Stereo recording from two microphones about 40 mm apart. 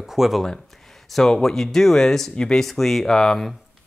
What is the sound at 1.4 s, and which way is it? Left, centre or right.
Speech, centre.